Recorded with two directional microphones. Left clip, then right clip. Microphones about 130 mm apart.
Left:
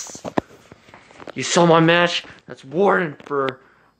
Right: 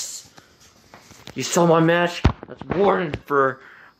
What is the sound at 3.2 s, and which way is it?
Speech, 5° right (ahead or behind).